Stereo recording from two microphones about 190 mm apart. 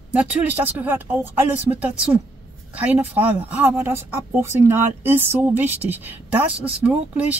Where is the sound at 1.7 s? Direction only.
5° right (ahead or behind).